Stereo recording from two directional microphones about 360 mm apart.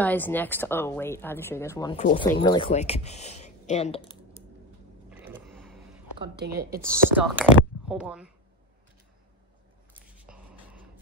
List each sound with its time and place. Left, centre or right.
0.0 s speech: centre
2.0 s speech: left
5.1 s a sound: centre
6.3 s a woman's voice: right
6.8 s speech: centre
10.1 s a sound: centre